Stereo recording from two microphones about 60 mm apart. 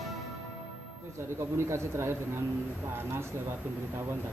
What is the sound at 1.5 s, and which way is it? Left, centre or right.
Speech, right.